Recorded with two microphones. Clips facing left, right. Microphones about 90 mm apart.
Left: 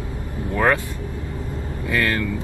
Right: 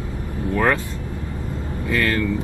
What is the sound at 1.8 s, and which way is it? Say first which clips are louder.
Speech: right 1 dB; 20° left (ahead or behind).